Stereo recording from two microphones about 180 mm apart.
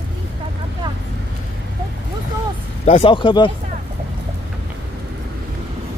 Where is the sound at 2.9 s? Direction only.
30° left (ahead or behind).